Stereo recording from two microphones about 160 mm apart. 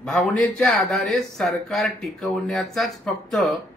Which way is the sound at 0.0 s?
5° left (ahead or behind).